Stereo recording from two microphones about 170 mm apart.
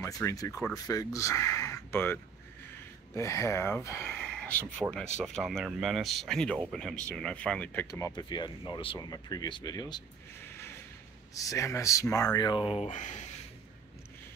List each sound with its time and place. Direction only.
0.0 s speech: 20° left (ahead or behind)
3.2 s speech: 15° left (ahead or behind)
7.8 s speech: 20° left (ahead or behind)
11.3 s speech: 20° left (ahead or behind)
12.9 s speech: 45° left (ahead or behind)